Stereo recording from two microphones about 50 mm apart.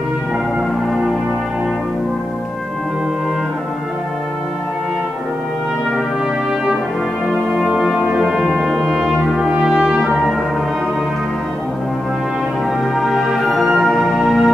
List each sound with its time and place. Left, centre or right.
7.2 s brass instrument: centre; by 10.1 s right
12.9 s music: centre